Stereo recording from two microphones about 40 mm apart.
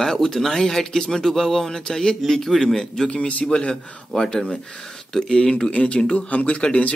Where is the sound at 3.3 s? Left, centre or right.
Left.